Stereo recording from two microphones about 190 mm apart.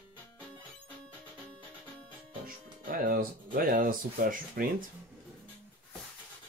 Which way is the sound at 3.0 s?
50° right (ahead or behind).